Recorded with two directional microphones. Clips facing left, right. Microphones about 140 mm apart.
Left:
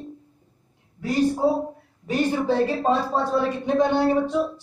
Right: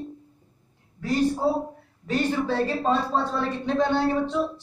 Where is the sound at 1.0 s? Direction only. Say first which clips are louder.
Left 2 dB; 15° left (ahead or behind).